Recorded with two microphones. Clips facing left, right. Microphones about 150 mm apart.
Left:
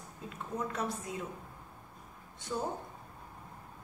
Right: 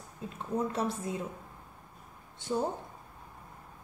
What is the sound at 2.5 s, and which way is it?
Speech, 25° right (ahead or behind).